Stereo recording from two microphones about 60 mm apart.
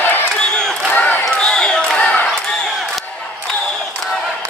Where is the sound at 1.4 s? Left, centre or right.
Centre.